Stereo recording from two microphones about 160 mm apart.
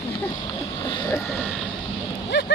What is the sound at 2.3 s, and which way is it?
Speech, 90° left.